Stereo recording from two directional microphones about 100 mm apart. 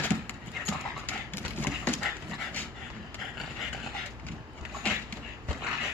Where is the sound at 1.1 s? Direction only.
15° left (ahead or behind).